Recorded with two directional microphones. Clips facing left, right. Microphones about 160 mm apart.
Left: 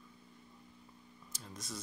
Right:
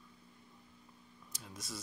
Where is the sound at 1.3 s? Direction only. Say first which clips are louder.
Left 1 dB; centre (ahead or behind).